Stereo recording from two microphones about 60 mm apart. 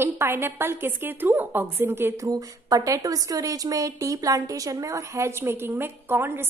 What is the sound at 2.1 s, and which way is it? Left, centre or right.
A woman's voice, right.